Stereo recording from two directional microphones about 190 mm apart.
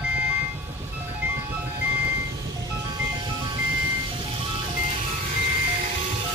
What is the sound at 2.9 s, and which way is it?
Music, 25° right (ahead or behind).